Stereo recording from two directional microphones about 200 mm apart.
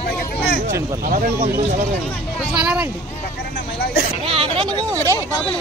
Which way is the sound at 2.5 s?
5° right (ahead or behind).